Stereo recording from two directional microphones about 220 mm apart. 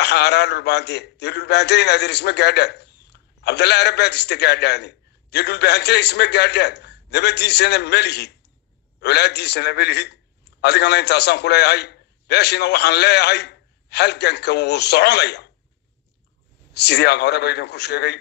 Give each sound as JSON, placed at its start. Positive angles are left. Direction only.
{"t": 0.0, "sound": "a man's voice", "side_deg": 50}
{"t": 16.7, "sound": "a man's voice", "side_deg": 50}